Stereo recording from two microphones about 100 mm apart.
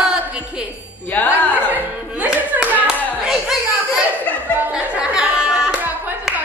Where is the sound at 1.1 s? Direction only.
15° left (ahead or behind).